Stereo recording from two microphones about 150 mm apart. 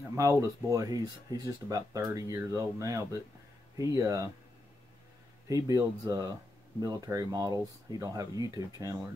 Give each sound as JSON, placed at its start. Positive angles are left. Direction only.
{"t": 0.1, "sound": "speech", "side_deg": -20}
{"t": 5.5, "sound": "speech", "side_deg": -25}